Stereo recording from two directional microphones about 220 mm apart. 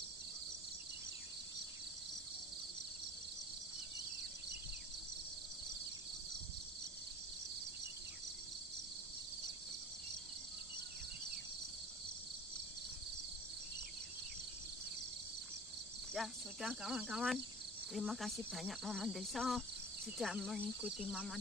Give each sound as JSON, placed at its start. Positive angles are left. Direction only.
{"t": 16.1, "sound": "speech", "side_deg": 0}